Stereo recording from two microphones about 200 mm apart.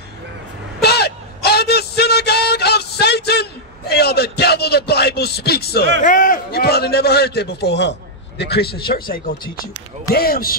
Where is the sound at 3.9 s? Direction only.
55° left (ahead or behind).